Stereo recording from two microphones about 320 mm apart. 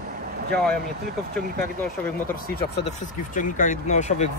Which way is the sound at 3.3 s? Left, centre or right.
Left.